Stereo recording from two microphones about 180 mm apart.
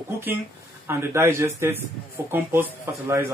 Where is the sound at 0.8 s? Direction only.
15° right (ahead or behind).